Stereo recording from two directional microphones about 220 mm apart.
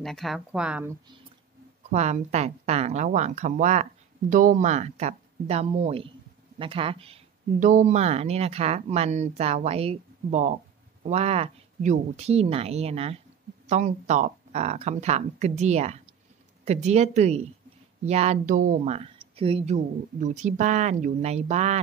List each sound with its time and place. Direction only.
0.0 s speech: centre (ahead or behind)
1.8 s speech: 30° right (ahead or behind)